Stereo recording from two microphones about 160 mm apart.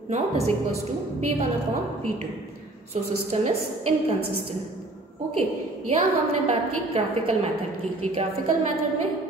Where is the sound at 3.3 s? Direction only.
40° right (ahead or behind).